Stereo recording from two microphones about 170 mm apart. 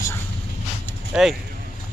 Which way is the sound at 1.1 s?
5° right (ahead or behind).